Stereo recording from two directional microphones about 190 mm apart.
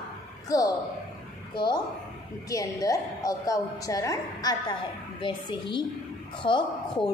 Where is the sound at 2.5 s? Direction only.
20° left (ahead or behind).